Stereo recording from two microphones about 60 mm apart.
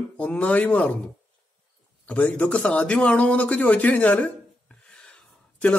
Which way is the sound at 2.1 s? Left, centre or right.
Left.